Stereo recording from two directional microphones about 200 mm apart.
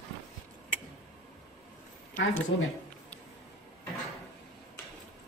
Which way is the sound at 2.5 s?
75° left (ahead or behind).